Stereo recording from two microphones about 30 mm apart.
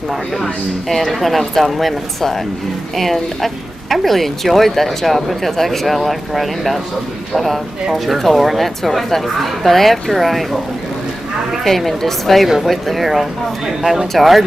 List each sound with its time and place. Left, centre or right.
0.4 s speech: centre
11.6 s speech: centre